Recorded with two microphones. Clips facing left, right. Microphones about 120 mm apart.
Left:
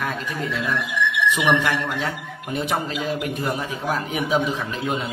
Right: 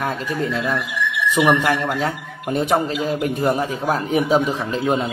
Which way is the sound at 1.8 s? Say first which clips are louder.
Right 4 dB; 40° right (ahead or behind).